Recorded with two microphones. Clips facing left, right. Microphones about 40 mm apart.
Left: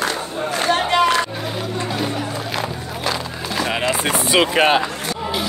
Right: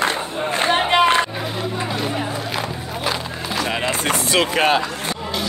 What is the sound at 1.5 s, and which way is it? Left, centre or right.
Chatter, centre.